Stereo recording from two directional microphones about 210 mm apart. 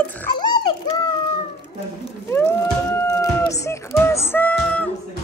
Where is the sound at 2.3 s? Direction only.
10° left (ahead or behind).